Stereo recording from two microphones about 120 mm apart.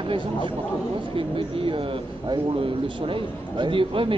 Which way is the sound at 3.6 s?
45° right (ahead or behind).